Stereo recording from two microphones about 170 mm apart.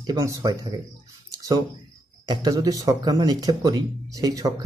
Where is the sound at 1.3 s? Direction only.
20° right (ahead or behind).